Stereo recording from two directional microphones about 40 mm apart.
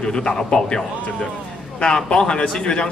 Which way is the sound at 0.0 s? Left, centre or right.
Left.